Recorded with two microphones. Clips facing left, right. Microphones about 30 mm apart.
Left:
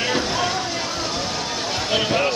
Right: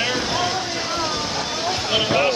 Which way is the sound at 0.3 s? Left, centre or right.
Centre.